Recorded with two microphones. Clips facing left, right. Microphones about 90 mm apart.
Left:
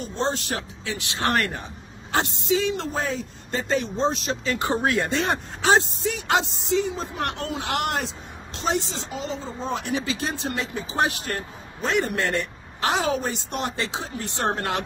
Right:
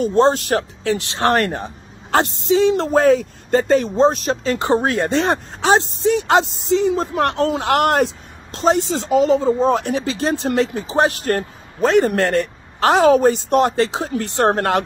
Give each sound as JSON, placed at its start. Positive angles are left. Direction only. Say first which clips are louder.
{"t": 0.0, "sound": "speech", "louder": "right 12 dB", "side_deg": -55}
{"t": 2.9, "sound": "speech", "louder": "right 14 dB", "side_deg": -60}
{"t": 3.6, "sound": "speech", "louder": "right 7 dB", "side_deg": -45}
{"t": 4.6, "sound": "speech", "louder": "right 4 dB", "side_deg": -30}
{"t": 7.0, "sound": "speech", "louder": "right 10 dB", "side_deg": -55}
{"t": 7.3, "sound": "speech", "louder": "right 10 dB", "side_deg": -45}
{"t": 8.9, "sound": "speech", "louder": "right 16 dB", "side_deg": -75}
{"t": 10.5, "sound": "speech", "louder": "right 11 dB", "side_deg": -70}
{"t": 10.9, "sound": "speech", "louder": "right 4 dB", "side_deg": -45}